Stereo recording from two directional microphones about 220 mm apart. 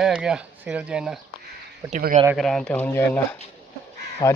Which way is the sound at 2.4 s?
Centre (ahead or behind).